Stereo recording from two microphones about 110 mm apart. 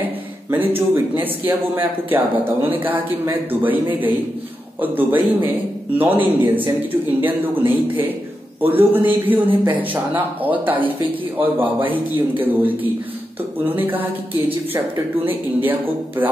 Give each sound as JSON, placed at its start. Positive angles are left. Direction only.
{"t": 0.5, "sound": "speech", "side_deg": -20}
{"t": 4.7, "sound": "speech", "side_deg": -15}
{"t": 11.6, "sound": "a man's voice", "side_deg": -50}
{"t": 12.4, "sound": "speech", "side_deg": -15}
{"t": 15.2, "sound": "speech", "side_deg": -15}